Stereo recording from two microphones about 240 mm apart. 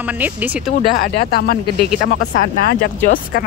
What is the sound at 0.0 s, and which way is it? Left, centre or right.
Speech, centre.